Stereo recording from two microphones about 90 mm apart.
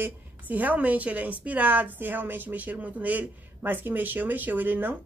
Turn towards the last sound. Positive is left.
turn(degrees=-20)  # may be behind; listen again after turning